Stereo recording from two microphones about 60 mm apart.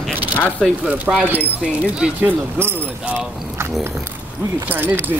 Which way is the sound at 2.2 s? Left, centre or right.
Right.